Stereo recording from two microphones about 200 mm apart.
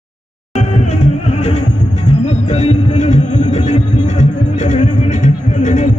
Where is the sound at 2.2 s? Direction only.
30° left (ahead or behind).